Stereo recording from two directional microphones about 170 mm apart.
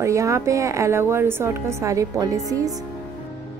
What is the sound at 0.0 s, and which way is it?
A woman's voice, 15° right (ahead or behind).